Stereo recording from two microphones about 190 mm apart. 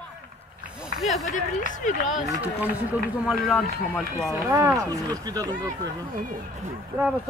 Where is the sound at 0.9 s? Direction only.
Centre (ahead or behind).